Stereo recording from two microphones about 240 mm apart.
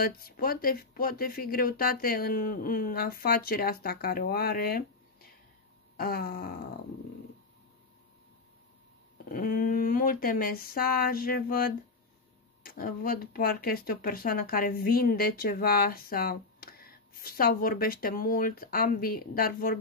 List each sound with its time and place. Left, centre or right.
0.0 s speech: left
9.3 s speech: left